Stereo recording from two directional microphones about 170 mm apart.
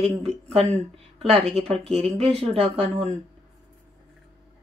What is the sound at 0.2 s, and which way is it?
A man's voice, 40° right (ahead or behind).